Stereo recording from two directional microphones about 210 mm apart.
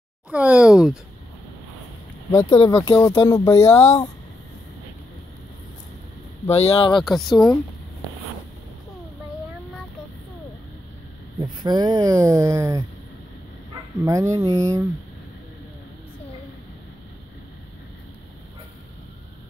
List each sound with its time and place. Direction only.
0.3 s speech: 5° right (ahead or behind)
2.5 s speech: 20° left (ahead or behind)
6.5 s speech: 30° left (ahead or behind)
7.0 s speech: centre (ahead or behind)
11.6 s speech: 20° right (ahead or behind)
14.0 s speech: 15° right (ahead or behind)